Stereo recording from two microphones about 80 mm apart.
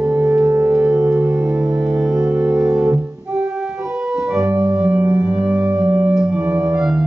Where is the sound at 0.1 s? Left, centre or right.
Centre.